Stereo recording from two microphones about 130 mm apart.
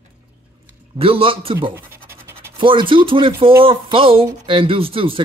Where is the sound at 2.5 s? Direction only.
40° right (ahead or behind).